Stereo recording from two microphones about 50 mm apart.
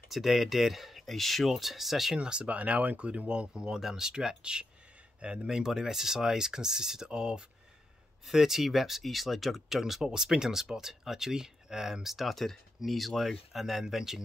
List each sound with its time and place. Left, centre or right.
0.1 s speech: centre
2.1 s speech: centre